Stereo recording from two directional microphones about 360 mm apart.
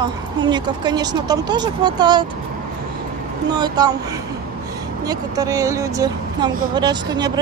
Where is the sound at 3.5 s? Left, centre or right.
Centre.